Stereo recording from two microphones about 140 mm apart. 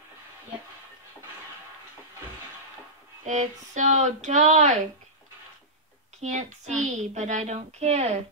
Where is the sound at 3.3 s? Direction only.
60° right (ahead or behind).